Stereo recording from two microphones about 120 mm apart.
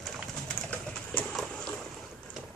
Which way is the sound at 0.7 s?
10° left (ahead or behind).